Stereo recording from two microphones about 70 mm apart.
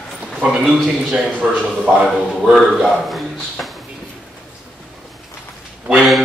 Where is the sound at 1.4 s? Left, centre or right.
Right.